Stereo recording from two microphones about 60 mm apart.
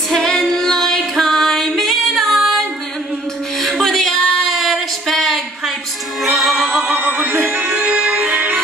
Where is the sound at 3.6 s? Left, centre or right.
Centre.